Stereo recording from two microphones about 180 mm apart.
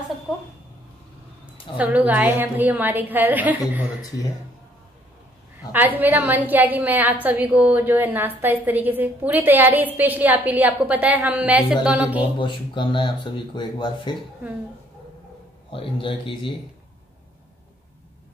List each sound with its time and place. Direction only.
1.8 s a woman's voice: 10° right (ahead or behind)
5.7 s a woman's voice: 10° right (ahead or behind)
12.4 s speech: 25° left (ahead or behind)
15.7 s speech: 30° left (ahead or behind)